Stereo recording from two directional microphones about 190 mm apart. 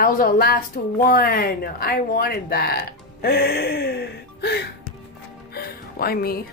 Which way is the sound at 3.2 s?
55° left (ahead or behind).